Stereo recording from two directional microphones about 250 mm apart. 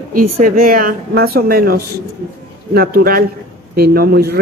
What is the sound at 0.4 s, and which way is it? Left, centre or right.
Speech, right.